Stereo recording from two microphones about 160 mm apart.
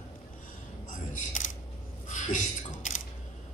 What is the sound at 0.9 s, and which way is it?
Camera, 55° left (ahead or behind).